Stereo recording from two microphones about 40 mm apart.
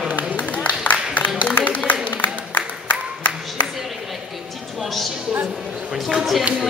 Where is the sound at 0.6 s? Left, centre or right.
Left.